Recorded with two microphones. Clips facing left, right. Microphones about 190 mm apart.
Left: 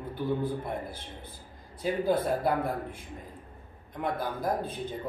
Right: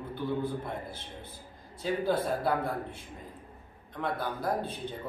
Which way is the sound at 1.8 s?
10° left (ahead or behind).